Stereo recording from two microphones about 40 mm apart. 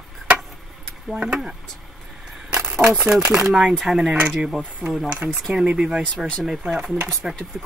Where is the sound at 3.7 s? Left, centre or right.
Centre.